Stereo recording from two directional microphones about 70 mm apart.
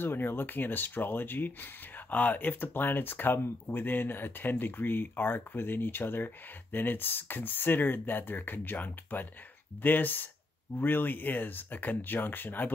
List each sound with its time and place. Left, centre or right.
0.0 s speech: left